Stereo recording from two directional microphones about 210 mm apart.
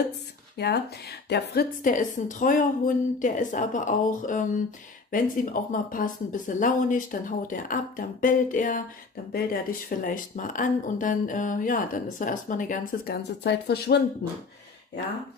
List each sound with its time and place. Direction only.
0.6 s speech: 50° left (ahead or behind)